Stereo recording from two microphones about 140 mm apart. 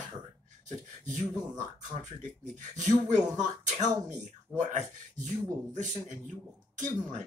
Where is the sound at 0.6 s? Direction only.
60° right (ahead or behind).